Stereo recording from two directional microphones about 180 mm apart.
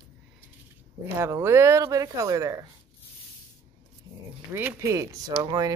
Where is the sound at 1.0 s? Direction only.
15° right (ahead or behind).